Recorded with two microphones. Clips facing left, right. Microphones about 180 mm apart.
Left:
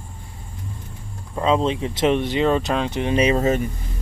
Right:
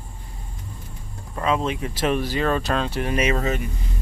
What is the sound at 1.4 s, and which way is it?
Speech, 25° left (ahead or behind).